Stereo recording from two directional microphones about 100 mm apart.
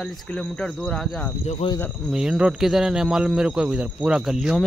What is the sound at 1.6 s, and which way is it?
Speech, 90° left.